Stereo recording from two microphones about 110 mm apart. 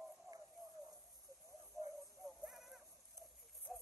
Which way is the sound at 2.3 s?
5° right (ahead or behind).